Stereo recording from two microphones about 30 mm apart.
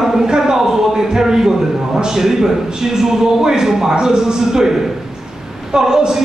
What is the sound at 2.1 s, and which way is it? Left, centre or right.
A man's voice, centre.